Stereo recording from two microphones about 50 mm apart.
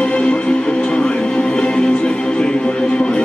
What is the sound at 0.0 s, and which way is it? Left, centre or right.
Music, centre.